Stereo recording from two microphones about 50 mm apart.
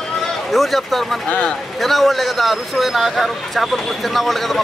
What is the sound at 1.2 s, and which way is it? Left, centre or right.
Speech, left.